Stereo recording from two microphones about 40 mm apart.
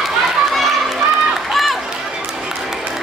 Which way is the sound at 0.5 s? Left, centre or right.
Centre.